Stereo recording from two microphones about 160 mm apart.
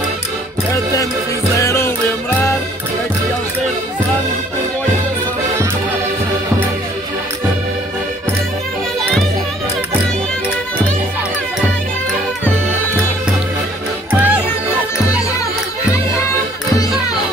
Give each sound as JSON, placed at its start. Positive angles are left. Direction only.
{"t": 1.6, "sound": "music", "side_deg": 15}
{"t": 14.1, "sound": "music", "side_deg": -10}